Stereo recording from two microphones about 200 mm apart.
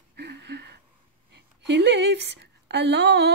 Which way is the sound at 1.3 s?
60° right (ahead or behind).